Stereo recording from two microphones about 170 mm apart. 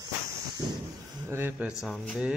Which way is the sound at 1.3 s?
15° right (ahead or behind).